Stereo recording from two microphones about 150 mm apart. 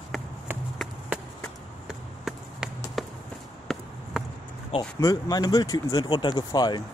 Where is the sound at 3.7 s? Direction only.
5° left (ahead or behind).